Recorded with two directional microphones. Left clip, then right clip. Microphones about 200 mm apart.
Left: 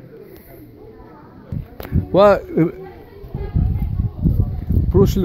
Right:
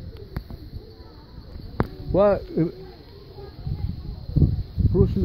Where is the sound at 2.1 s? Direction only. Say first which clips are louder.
Left 7 dB; centre (ahead or behind).